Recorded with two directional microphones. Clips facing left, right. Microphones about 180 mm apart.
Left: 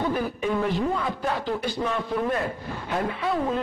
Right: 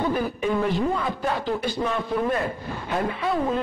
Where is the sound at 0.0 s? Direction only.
20° right (ahead or behind).